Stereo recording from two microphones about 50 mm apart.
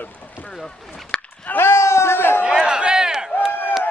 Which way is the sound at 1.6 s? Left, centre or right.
Left.